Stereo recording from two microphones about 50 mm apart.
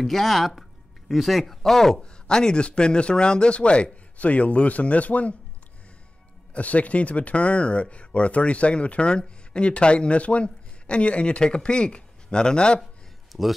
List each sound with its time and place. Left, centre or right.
0.0 s speech: centre; by 5.3 s left
6.5 s speech: left
13.3 s a man's voice: centre